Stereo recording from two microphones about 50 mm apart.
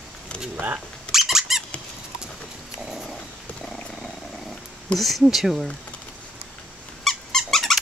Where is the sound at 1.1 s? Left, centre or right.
Centre.